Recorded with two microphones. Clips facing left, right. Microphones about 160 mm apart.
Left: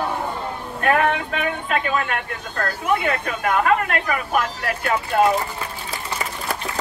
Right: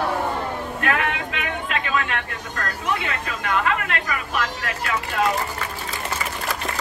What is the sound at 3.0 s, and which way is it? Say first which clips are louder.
Speech: left 5 dB; 50° left (ahead or behind).